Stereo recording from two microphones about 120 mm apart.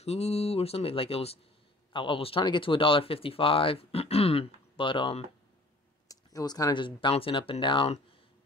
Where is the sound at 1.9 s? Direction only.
45° left (ahead or behind).